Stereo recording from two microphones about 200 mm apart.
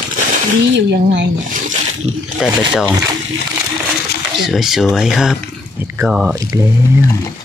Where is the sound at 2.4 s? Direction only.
5° right (ahead or behind).